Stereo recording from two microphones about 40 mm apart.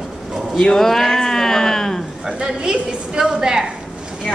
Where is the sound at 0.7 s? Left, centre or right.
Centre.